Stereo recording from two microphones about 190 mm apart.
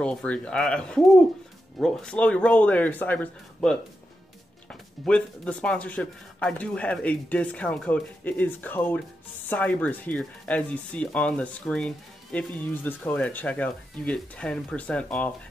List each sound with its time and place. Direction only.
0.0 s speech: 5° left (ahead or behind)